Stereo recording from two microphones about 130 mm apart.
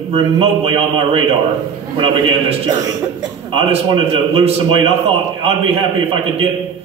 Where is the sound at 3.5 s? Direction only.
45° right (ahead or behind).